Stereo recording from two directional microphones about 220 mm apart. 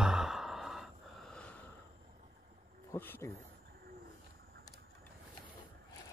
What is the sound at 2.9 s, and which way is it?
Speech, 10° left (ahead or behind).